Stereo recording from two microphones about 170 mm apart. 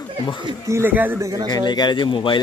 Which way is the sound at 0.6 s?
15° right (ahead or behind).